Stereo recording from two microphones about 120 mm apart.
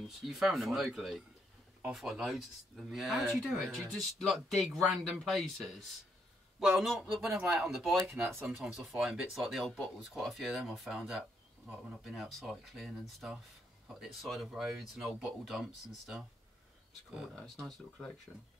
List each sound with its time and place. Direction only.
0.0 s speech: centre (ahead or behind)
13.9 s speech: centre (ahead or behind)